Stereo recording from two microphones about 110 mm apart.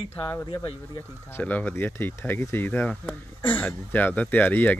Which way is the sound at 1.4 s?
15° left (ahead or behind).